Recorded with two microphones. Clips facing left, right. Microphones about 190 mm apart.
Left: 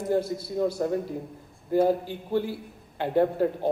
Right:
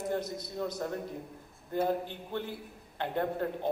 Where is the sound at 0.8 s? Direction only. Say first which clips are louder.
Left 8 dB; 5° left (ahead or behind).